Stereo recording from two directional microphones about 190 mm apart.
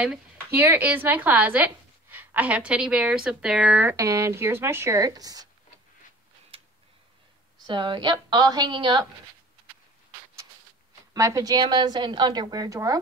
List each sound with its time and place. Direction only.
0.6 s a woman's voice: 10° right (ahead or behind)
3.9 s a woman's voice: 15° right (ahead or behind)
7.6 s a woman's voice: 25° right (ahead or behind)
11.1 s a woman's voice: 15° right (ahead or behind)